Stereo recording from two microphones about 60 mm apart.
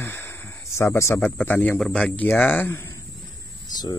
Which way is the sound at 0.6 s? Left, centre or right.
Left.